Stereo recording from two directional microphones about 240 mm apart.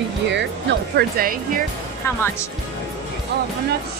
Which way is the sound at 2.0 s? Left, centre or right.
Centre.